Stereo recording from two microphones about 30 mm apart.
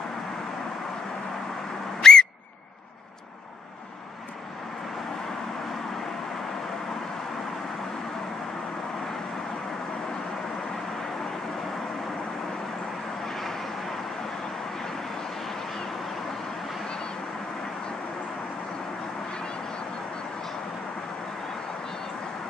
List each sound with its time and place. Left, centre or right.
2.0 s whistle: left
13.2 s vehicle: centre
15.4 s a sound: centre